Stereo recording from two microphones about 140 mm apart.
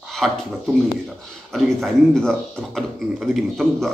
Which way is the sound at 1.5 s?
5° left (ahead or behind).